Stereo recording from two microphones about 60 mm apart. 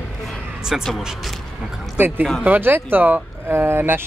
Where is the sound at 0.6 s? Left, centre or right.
Centre.